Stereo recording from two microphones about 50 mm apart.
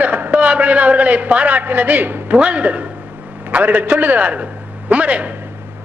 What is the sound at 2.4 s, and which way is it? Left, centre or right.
A man's voice, right.